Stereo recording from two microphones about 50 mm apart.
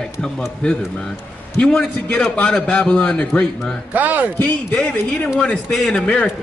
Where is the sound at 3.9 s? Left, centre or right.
Right.